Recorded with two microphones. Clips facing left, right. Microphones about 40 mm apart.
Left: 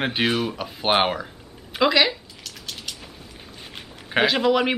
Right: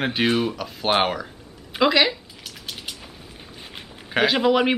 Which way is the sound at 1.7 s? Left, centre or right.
Centre.